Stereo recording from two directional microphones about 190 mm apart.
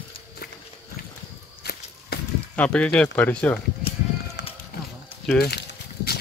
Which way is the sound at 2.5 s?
5° left (ahead or behind).